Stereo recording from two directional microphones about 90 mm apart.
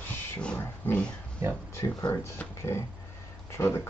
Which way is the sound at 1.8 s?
40° left (ahead or behind).